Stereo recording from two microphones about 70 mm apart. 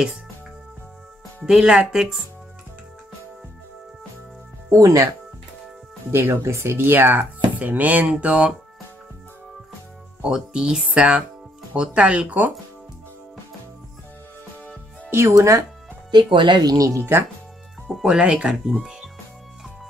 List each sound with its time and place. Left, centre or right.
1.4 s speech: centre
4.6 s speech: right
6.1 s speech: right; by 8.5 s centre
10.2 s speech: centre
15.0 s speech: right
16.1 s speech: right
18.0 s speech: centre